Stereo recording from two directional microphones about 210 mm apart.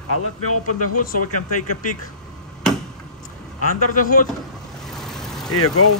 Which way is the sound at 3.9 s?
40° left (ahead or behind).